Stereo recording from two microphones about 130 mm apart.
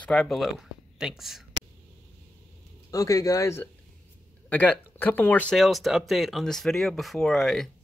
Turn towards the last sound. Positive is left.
turn(degrees=5)  # may be behind; listen again after turning